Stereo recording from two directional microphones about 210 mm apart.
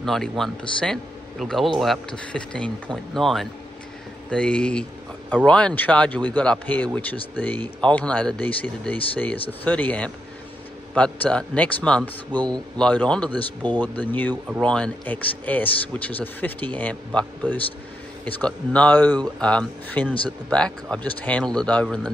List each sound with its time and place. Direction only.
0.0 s a man's voice: centre (ahead or behind)
12.3 s speech: 20° right (ahead or behind)
12.7 s a man's voice: 5° left (ahead or behind)